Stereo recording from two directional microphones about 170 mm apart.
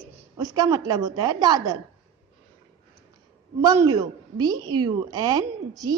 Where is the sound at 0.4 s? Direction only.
20° right (ahead or behind).